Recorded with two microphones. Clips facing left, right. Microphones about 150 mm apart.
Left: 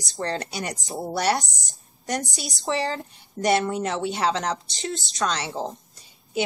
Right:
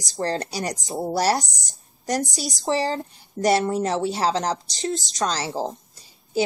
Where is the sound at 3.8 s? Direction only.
35° right (ahead or behind).